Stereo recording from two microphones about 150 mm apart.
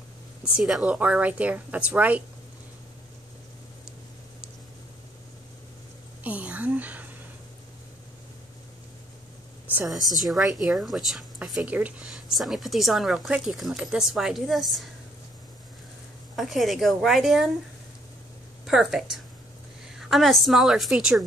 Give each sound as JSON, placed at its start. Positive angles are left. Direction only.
{"t": 0.6, "sound": "speech", "side_deg": -5}
{"t": 6.2, "sound": "speech", "side_deg": -10}
{"t": 10.2, "sound": "speech", "side_deg": 0}
{"t": 16.3, "sound": "speech", "side_deg": 0}
{"t": 18.7, "sound": "speech", "side_deg": 0}